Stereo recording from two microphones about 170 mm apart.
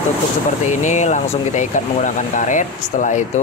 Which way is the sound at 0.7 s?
45° left (ahead or behind).